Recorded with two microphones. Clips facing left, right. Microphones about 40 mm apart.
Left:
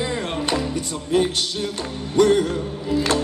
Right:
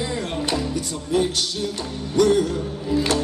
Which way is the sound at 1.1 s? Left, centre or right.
Left.